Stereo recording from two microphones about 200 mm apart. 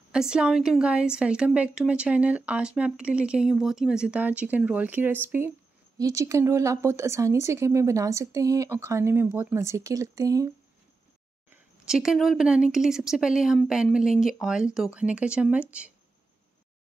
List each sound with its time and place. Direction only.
0.1 s a woman's voice: 5° right (ahead or behind)
11.5 s a woman's voice: 5° right (ahead or behind)